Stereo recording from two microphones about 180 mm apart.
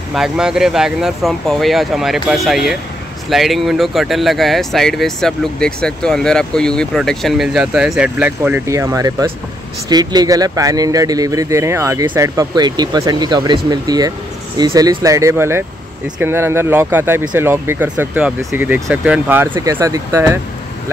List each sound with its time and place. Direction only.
0.1 s speech: 5° right (ahead or behind)